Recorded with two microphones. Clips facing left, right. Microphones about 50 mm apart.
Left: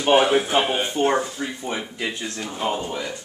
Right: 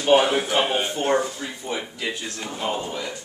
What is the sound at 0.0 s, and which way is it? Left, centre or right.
Speech, centre.